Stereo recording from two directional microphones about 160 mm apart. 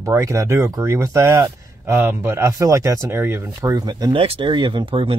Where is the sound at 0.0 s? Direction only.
20° right (ahead or behind).